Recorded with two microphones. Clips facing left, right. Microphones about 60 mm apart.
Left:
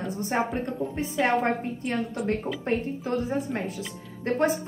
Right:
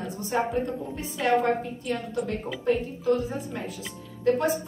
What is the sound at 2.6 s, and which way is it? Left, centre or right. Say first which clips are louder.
A woman's voice: right 3 dB; left.